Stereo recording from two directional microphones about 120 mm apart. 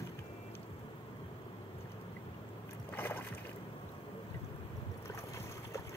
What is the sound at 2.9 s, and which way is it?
Boat, 15° left (ahead or behind).